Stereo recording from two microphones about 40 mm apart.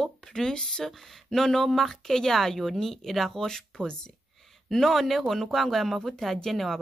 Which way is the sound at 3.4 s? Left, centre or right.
Centre.